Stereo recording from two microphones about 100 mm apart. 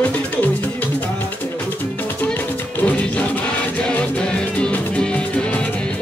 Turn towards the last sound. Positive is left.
turn(degrees=10)  # may be behind; listen again after turning